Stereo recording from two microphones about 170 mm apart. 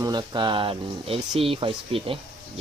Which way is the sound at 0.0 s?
25° right (ahead or behind).